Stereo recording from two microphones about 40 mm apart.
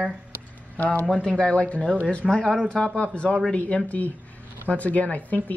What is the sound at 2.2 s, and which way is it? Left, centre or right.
Speech, centre.